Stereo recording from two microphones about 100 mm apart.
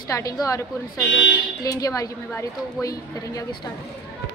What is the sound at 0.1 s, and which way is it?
Speech, 35° left (ahead or behind).